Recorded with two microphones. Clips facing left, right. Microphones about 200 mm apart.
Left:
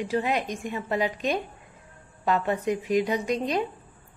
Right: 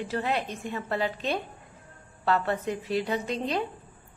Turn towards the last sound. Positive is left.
turn(degrees=15)  # may be behind; listen again after turning